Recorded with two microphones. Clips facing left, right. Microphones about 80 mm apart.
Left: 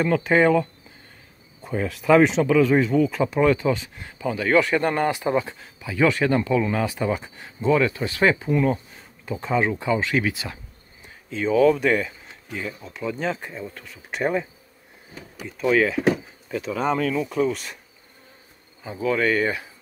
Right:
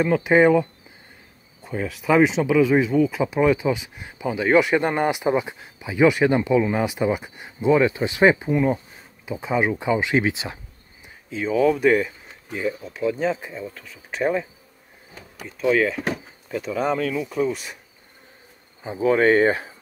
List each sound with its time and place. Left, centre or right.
0.0 s speech: centre
1.6 s speech: centre; by 10.6 s right
11.0 s speech: centre
18.8 s speech: right